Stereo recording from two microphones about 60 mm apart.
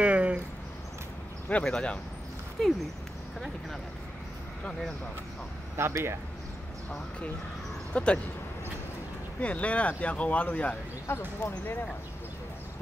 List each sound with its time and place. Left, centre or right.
0.0 s a sound: right
1.6 s speech: centre
2.6 s speech: centre
5.8 s speech: right
7.9 s speech: centre
9.4 s speech: left
11.1 s speech: left